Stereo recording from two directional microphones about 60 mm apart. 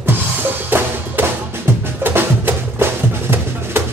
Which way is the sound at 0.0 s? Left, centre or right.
Right.